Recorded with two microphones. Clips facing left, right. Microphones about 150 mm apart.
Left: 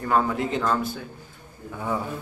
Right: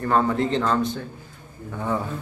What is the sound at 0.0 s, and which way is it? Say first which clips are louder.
Speech: right 2 dB; 5° left (ahead or behind).